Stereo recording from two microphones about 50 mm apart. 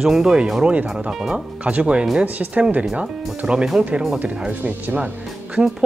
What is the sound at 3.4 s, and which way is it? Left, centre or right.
Speech, centre.